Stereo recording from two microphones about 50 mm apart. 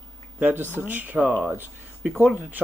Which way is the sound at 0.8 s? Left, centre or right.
Right.